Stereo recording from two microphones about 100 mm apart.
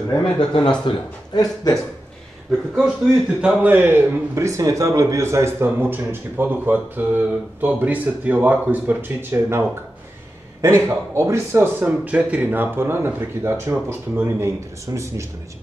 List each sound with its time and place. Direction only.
0.2 s a man's voice: 50° left (ahead or behind)
3.3 s a man's voice: 15° right (ahead or behind); by 15.2 s 30° right (ahead or behind)